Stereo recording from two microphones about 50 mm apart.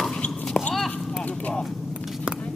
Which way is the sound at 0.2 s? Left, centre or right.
Left.